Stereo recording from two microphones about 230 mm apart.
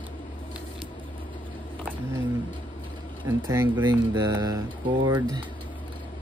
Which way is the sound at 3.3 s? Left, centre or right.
Centre.